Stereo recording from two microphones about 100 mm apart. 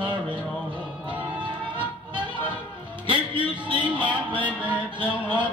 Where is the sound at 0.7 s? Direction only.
15° right (ahead or behind).